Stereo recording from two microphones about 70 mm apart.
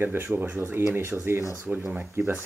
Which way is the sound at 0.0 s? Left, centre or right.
Right.